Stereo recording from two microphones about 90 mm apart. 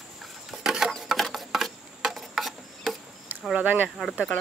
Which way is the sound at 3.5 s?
20° right (ahead or behind).